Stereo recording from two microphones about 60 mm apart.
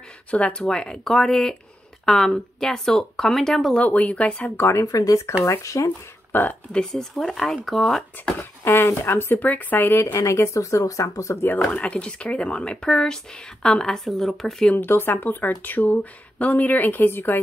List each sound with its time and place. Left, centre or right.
0.3 s speech: centre
3.7 s speech: left
4.6 s speech: left
4.9 s speech: left
5.4 s speech: left
6.3 s a woman's voice: left
6.7 s speech: centre
8.6 s speech: left
9.4 s speech: left
10.2 s speech: left
11.4 s speech: left; by 14.7 s centre
14.8 s a woman's voice: left